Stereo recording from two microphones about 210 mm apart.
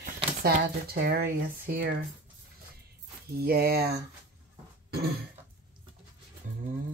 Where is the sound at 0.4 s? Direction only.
45° right (ahead or behind).